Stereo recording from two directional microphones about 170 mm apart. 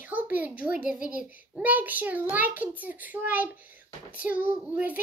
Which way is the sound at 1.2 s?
10° right (ahead or behind).